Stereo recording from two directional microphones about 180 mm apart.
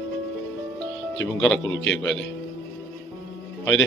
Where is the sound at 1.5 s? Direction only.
90° left.